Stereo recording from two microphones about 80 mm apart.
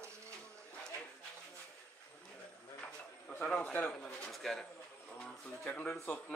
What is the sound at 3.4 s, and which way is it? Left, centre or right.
Speech, centre.